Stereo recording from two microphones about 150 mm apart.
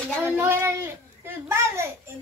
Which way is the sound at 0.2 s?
15° right (ahead or behind).